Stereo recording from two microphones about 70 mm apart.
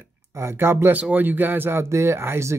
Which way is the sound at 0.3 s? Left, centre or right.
Right.